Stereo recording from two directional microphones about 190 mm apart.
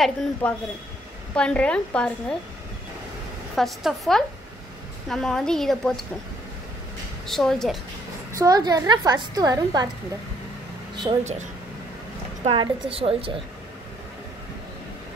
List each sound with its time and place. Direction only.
0.0 s a woman's voice: 5° left (ahead or behind)
3.5 s a woman's voice: centre (ahead or behind)
7.2 s a woman's voice: centre (ahead or behind)
8.4 s a woman's voice: 20° right (ahead or behind)
11.1 s speech: 40° right (ahead or behind)
12.9 s a woman's voice: 30° right (ahead or behind)